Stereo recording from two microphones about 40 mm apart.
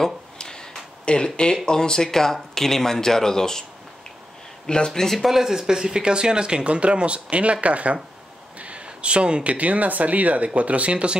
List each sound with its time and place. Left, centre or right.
0.0 s a sound: centre
1.7 s speech: centre
4.6 s speech: left
5.1 s speech: centre; by 11.1 s right